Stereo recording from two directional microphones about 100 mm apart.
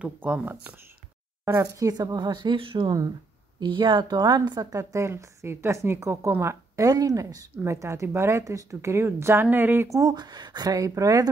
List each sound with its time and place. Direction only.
0.0 s speech: 15° right (ahead or behind)
1.4 s a woman's voice: 35° right (ahead or behind)
9.8 s a woman's voice: 35° right (ahead or behind)